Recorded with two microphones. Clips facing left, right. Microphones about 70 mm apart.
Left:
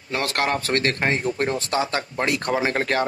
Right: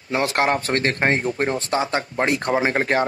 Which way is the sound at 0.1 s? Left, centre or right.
Right.